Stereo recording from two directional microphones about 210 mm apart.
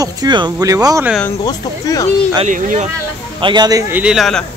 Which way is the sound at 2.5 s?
40° right (ahead or behind).